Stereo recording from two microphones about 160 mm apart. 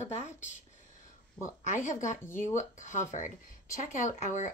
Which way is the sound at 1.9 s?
50° left (ahead or behind).